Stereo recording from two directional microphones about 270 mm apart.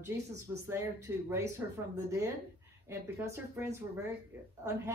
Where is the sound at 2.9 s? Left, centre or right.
Centre.